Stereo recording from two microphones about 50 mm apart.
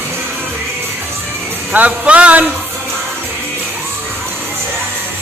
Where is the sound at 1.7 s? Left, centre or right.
Right.